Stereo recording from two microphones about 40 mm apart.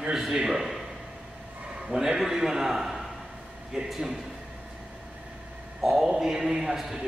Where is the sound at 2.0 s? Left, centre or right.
Centre.